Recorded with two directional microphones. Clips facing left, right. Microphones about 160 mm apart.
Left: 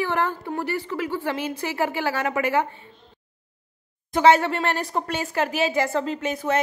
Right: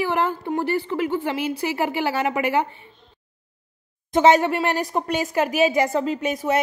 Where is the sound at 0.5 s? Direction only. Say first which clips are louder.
Right 4 dB; 25° right (ahead or behind).